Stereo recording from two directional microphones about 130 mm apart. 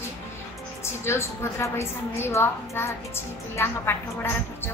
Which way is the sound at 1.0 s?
20° left (ahead or behind).